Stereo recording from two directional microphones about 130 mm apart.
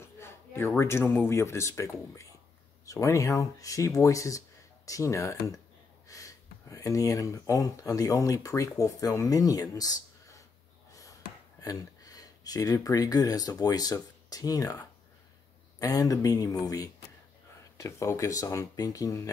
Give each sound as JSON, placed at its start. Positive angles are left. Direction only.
{"t": 0.0, "sound": "speech", "side_deg": 20}
{"t": 11.6, "sound": "speech", "side_deg": 30}